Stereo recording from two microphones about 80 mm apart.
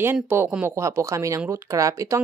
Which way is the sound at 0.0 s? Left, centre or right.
Right.